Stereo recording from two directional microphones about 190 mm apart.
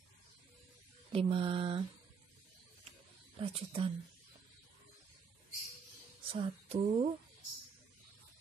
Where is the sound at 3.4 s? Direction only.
30° right (ahead or behind).